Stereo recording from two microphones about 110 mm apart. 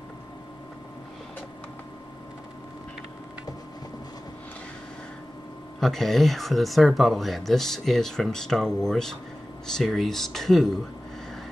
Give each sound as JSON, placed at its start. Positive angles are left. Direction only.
{"t": 5.8, "sound": "speech", "side_deg": 5}